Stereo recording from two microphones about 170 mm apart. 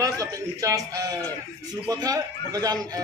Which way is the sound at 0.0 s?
20° right (ahead or behind).